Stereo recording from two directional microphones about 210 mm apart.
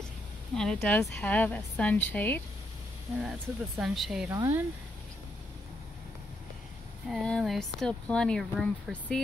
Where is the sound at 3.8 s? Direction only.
Centre (ahead or behind).